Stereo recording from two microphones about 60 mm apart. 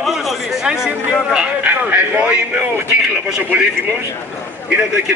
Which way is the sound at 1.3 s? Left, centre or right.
Centre.